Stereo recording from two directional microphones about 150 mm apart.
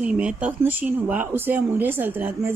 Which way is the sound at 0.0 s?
10° right (ahead or behind).